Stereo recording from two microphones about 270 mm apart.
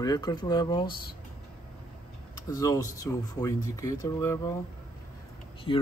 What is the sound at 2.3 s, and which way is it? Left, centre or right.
Speech, centre.